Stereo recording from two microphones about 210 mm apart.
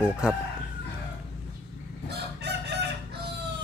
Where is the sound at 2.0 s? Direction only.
50° right (ahead or behind).